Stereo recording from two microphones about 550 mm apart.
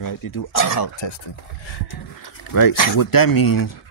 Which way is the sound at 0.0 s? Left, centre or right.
Left.